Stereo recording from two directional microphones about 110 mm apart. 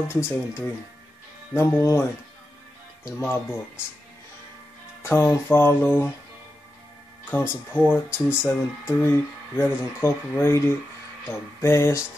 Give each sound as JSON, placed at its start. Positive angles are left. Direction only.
{"t": 0.1, "sound": "speech", "side_deg": 25}
{"t": 3.1, "sound": "speech", "side_deg": 25}
{"t": 5.0, "sound": "speech", "side_deg": 20}
{"t": 7.2, "sound": "speech", "side_deg": 20}